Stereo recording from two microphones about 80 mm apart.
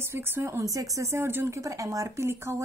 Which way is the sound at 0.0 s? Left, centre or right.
Right.